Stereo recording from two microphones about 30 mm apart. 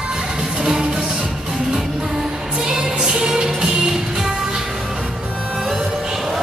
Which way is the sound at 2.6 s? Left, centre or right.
Right.